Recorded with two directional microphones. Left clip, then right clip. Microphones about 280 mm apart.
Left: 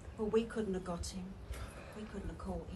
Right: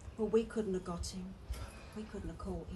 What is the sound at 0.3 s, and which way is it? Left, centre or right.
Speech, right.